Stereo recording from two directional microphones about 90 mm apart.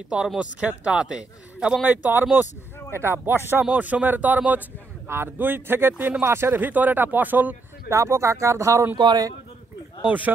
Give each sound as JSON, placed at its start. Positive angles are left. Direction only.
{"t": 0.4, "sound": "speech", "side_deg": -10}
{"t": 1.9, "sound": "speech", "side_deg": -20}
{"t": 7.9, "sound": "speech", "side_deg": -35}
{"t": 8.9, "sound": "a man's voice", "side_deg": -50}
{"t": 10.0, "sound": "speech", "side_deg": -20}